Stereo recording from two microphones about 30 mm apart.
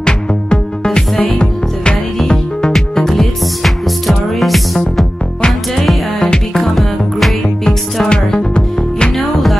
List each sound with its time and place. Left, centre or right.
0.0 s music: left
2.7 s music: centre
6.5 s music: centre
7.4 s music: centre
9.1 s music: centre